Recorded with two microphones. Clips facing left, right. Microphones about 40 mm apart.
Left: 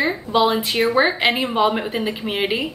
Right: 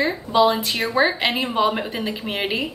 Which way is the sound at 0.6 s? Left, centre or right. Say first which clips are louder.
Left 3 dB; left.